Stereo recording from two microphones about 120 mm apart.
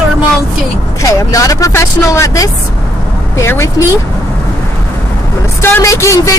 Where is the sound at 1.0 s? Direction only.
30° left (ahead or behind).